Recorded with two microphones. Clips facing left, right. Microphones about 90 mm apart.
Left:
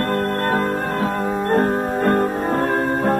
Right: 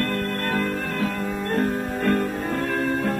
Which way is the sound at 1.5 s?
40° left (ahead or behind).